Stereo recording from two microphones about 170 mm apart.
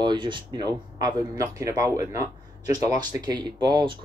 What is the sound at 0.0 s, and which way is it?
Speech, 30° right (ahead or behind).